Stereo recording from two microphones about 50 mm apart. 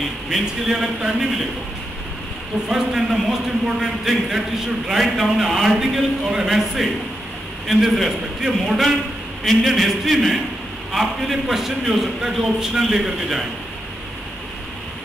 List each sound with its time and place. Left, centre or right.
0.3 s a man's voice: centre
2.7 s a man's voice: centre
9.4 s a man's voice: centre